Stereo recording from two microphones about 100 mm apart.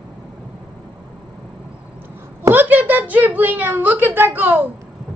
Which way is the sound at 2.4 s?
20° right (ahead or behind).